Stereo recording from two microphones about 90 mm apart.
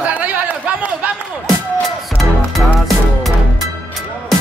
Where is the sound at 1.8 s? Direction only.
Centre (ahead or behind).